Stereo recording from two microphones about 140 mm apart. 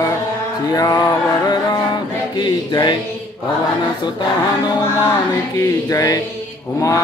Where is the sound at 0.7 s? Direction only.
25° left (ahead or behind).